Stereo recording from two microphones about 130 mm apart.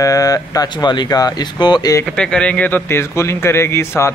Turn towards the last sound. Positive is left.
turn(degrees=20)  # may be behind; listen again after turning